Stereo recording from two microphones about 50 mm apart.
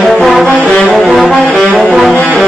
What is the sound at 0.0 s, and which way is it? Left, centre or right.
Music, centre.